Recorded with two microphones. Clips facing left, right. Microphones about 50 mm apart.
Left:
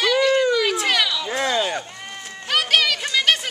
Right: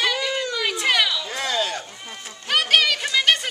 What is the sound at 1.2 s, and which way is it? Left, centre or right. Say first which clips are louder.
Speech: left 3 dB; centre.